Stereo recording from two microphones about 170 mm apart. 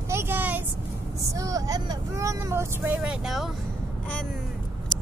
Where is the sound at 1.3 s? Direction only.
20° right (ahead or behind); by 3.4 s 5° right (ahead or behind).